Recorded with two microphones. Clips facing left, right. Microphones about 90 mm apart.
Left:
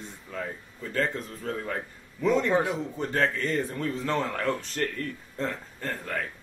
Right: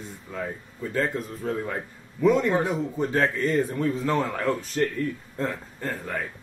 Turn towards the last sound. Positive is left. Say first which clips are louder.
# right 2 dB
turn(degrees=-10)  # may be behind; listen again after turning